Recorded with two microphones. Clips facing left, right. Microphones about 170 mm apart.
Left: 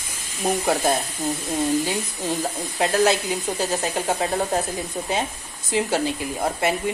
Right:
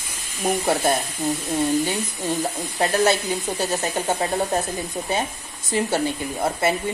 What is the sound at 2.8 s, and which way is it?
Sizzle, centre (ahead or behind).